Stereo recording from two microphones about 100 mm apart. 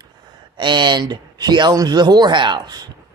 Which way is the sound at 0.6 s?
50° right (ahead or behind).